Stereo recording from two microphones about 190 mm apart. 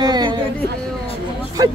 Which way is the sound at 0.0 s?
20° right (ahead or behind).